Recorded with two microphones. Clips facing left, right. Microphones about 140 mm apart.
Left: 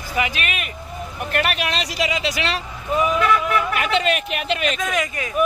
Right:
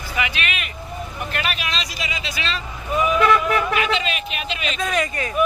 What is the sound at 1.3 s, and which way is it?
Vehicle, 60° left (ahead or behind).